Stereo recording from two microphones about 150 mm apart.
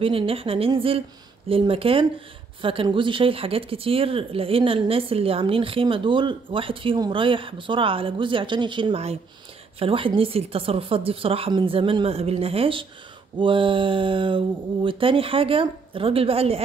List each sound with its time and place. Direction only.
0.0 s speech: 40° right (ahead or behind)